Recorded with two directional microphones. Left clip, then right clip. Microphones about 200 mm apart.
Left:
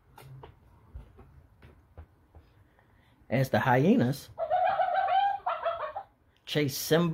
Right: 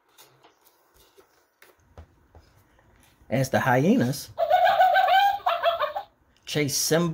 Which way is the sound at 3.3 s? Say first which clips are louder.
Right 3 dB; 5° right (ahead or behind).